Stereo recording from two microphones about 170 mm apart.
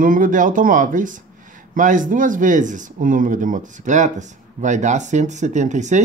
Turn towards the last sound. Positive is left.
turn(degrees=-45)  # may be behind; listen again after turning